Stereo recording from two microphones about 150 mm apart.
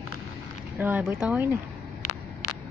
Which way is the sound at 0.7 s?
10° right (ahead or behind).